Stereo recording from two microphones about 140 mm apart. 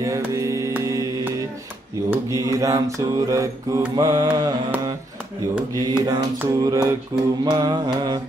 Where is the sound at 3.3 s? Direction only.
20° right (ahead or behind).